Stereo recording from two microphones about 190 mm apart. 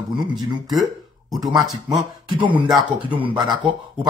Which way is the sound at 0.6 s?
Centre (ahead or behind).